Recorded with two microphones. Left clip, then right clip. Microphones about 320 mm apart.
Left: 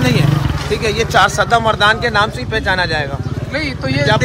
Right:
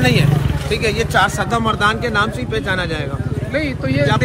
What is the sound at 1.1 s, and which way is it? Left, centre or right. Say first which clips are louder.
Speech: left 6 dB; left.